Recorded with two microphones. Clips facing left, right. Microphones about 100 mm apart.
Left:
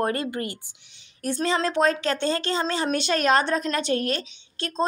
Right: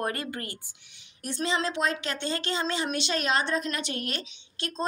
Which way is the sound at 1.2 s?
45° left (ahead or behind).